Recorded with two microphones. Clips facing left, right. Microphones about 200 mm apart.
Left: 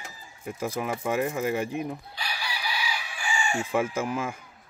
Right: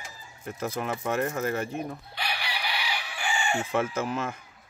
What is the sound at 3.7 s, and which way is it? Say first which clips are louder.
Speech: left 1 dB; 10° left (ahead or behind).